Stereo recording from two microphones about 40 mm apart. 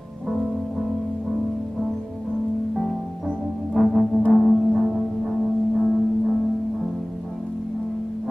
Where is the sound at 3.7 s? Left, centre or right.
Centre.